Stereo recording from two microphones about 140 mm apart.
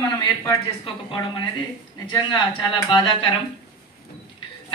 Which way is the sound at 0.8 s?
35° left (ahead or behind).